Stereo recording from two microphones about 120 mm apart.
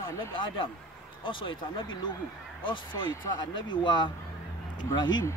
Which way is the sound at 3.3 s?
40° left (ahead or behind).